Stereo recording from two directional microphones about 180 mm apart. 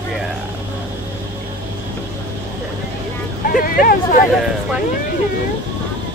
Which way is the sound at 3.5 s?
50° left (ahead or behind).